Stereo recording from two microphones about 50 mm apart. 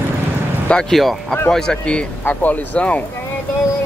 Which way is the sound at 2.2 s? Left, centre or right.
Left.